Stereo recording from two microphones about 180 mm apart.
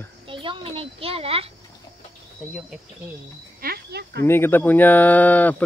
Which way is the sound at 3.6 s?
60° right (ahead or behind).